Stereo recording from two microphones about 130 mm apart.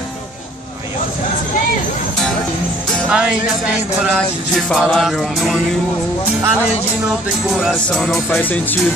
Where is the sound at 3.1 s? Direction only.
5° right (ahead or behind).